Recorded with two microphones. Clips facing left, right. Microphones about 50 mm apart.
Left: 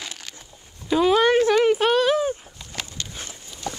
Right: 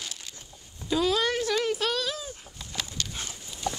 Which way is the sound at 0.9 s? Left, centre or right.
Left.